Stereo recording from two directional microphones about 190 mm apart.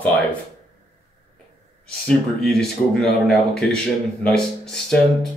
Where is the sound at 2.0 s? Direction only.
5° left (ahead or behind).